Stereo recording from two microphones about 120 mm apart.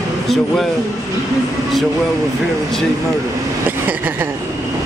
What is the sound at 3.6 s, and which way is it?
Vehicle, 15° right (ahead or behind).